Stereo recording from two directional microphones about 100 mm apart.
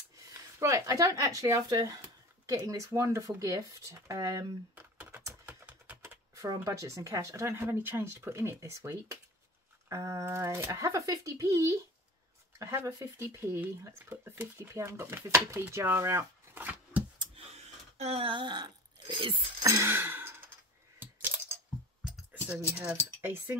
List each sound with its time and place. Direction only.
0.3 s speech: 30° right (ahead or behind)
4.7 s typing: 15° right (ahead or behind)
6.0 s speech: 35° right (ahead or behind); by 17.0 s 20° right (ahead or behind)
17.4 s a sound: 90° right; by 19.4 s 65° right (ahead or behind)
19.6 s music: 30° right (ahead or behind)
21.0 s computer keyboard: 20° right (ahead or behind)
23.2 s speech: 20° right (ahead or behind)